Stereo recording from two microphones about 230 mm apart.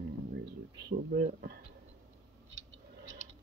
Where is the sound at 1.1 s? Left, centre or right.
Right.